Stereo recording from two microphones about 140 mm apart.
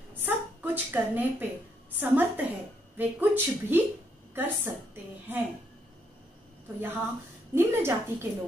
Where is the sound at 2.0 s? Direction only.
15° right (ahead or behind).